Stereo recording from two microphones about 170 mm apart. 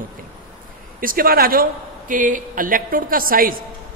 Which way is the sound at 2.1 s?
50° right (ahead or behind).